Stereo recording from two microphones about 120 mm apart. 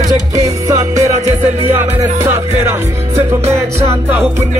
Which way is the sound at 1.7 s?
20° right (ahead or behind).